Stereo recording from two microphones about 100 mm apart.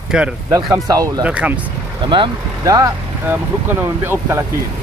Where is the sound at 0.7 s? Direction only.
35° right (ahead or behind).